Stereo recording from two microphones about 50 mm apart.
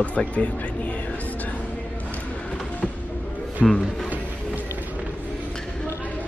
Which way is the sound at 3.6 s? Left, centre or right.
Centre.